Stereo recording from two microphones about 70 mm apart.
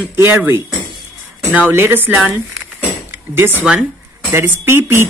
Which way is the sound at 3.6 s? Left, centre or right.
Centre.